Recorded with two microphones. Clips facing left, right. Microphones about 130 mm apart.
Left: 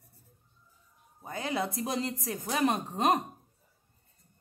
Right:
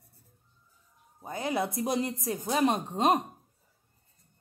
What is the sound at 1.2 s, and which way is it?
A woman's voice, 20° right (ahead or behind).